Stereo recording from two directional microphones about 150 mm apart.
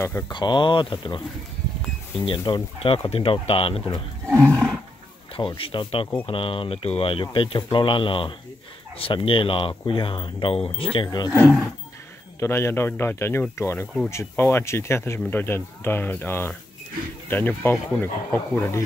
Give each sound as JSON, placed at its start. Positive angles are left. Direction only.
{"t": 0.3, "sound": "speech", "side_deg": 30}
{"t": 4.3, "sound": "speech", "side_deg": 5}
{"t": 5.6, "sound": "speech", "side_deg": 35}
{"t": 12.4, "sound": "speech", "side_deg": 15}